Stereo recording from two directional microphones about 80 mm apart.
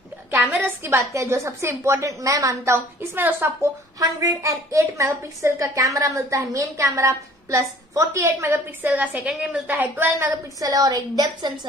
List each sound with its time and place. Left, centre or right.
0.3 s a sound: right
0.8 s a woman's voice: right
4.0 s a woman's voice: right
8.5 s a woman's voice: right
10.1 s a woman's voice: right